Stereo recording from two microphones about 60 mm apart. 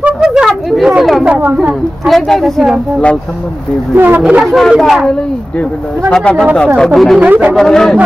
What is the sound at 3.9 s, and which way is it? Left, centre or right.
Speech, right.